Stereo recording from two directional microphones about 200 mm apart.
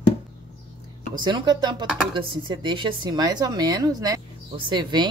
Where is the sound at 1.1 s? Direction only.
20° right (ahead or behind).